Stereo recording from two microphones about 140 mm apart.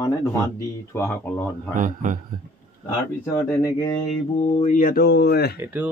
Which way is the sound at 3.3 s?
25° left (ahead or behind).